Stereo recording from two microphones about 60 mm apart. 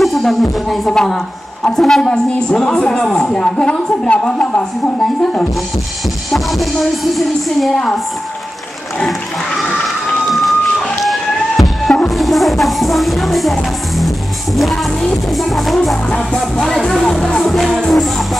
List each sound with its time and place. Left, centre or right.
0.0 s speech: centre
6.3 s speech: centre
10.3 s music: centre
15.2 s speech: centre
16.1 s speech: centre
16.3 s speech: centre